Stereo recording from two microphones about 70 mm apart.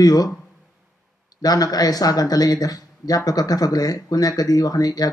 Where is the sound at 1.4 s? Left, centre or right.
Left.